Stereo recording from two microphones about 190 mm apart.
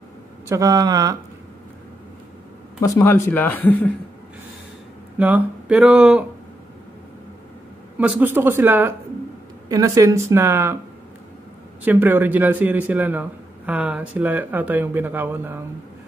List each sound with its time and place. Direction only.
0.5 s speech: 20° right (ahead or behind)
2.8 s a man's voice: 15° left (ahead or behind)
5.2 s a man's voice: 5° right (ahead or behind)
8.0 s a man's voice: 10° right (ahead or behind)
11.8 s a man's voice: 10° right (ahead or behind)